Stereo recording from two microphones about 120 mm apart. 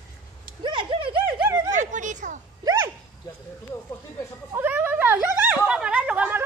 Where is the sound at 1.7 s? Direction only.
90° right.